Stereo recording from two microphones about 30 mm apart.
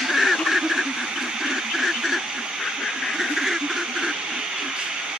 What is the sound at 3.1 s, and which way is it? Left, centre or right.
Duck, centre.